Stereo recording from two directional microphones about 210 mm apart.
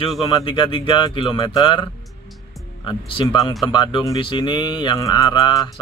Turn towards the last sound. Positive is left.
turn(degrees=20)  # may be behind; listen again after turning